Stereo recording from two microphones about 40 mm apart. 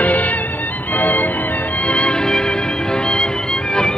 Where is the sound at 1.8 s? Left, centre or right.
Left.